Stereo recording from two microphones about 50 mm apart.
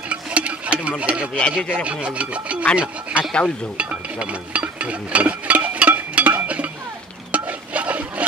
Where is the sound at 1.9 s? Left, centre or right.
Right.